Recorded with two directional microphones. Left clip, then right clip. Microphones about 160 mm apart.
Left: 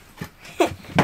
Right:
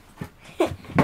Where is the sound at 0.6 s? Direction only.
35° left (ahead or behind).